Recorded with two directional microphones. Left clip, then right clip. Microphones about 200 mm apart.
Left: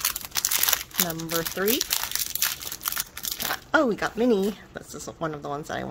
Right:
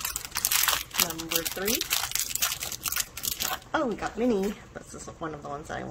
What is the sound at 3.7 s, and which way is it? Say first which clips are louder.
Speech: left 8 dB; 45° left (ahead or behind).